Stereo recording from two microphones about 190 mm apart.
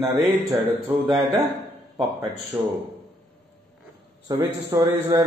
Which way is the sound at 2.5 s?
10° right (ahead or behind).